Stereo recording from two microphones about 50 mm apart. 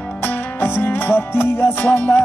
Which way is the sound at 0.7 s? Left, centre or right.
Left.